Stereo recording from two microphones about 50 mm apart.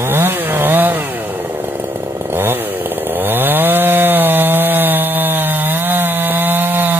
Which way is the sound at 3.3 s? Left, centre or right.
Right.